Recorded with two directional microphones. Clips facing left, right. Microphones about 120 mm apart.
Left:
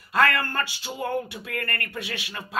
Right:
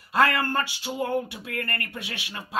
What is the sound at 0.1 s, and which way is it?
Speech, 20° right (ahead or behind).